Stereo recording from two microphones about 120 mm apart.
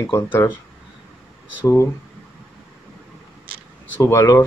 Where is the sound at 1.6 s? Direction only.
25° left (ahead or behind).